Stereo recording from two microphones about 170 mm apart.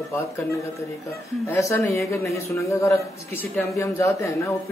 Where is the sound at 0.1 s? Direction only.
15° left (ahead or behind).